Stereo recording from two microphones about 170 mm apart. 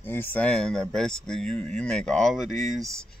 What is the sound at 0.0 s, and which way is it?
A man's voice, 10° left (ahead or behind).